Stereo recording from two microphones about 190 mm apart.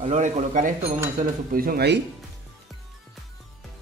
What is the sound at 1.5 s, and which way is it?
Speech, 50° right (ahead or behind).